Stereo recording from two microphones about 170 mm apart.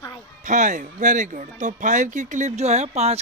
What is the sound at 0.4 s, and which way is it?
A woman's voice, 45° right (ahead or behind).